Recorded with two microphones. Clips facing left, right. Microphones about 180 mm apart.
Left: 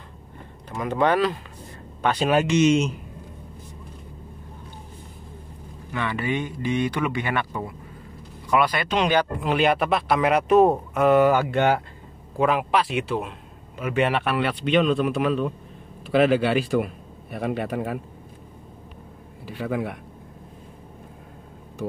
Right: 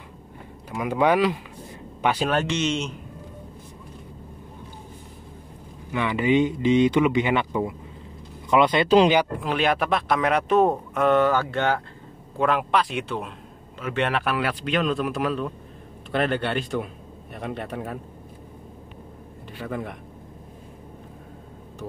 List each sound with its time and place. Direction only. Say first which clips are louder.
0.7 s speech: right 1 dB; 10° right (ahead or behind)
2.1 s speech: left 4 dB; 10° left (ahead or behind)
5.9 s speech: right 5 dB; 15° right (ahead or behind)
9.4 s speech: left 2 dB; centre (ahead or behind)
12.4 s speech: left 1 dB; centre (ahead or behind)
19.4 s a man's voice: left 4 dB; 5° left (ahead or behind)